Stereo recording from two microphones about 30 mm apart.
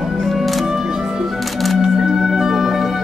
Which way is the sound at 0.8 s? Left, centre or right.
Centre.